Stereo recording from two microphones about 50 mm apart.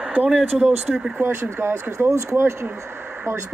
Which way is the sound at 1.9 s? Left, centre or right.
Right.